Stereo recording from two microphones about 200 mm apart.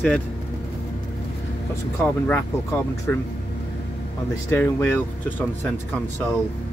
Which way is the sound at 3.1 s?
10° left (ahead or behind).